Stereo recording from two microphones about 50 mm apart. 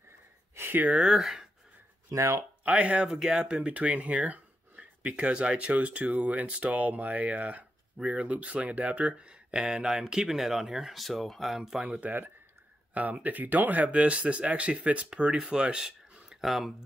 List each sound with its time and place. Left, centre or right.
0.8 s speech: right
1.1 s speech: centre
2.0 s speech: right
2.6 s speech: right; by 11.8 s centre
12.0 s speech: right; by 15.4 s centre
15.5 s a sound: centre
16.3 s speech: centre